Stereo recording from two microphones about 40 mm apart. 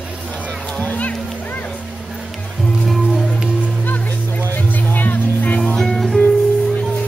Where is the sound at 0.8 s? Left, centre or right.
Left.